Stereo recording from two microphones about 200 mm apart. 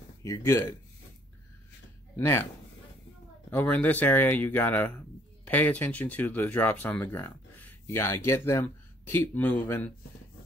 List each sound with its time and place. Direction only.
0.2 s speech: 15° left (ahead or behind)
2.1 s speech: 15° left (ahead or behind)
3.4 s speech: 10° left (ahead or behind)